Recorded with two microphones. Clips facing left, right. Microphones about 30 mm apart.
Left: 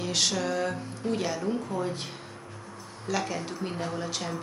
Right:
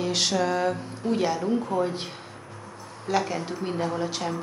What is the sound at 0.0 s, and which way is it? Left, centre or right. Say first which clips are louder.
A woman's voice: right 3 dB; centre.